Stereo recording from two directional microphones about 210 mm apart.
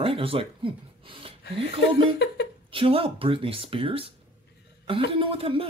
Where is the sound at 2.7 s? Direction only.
25° right (ahead or behind).